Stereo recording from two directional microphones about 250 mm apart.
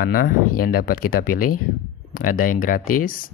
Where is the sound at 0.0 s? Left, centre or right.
Left.